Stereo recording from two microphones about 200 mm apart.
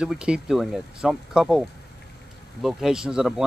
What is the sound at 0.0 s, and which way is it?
Speech, 5° right (ahead or behind).